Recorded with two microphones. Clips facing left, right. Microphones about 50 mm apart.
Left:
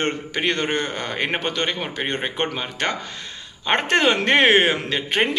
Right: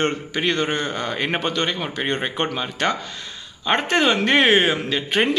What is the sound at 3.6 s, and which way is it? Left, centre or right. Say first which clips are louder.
Speech: even; left.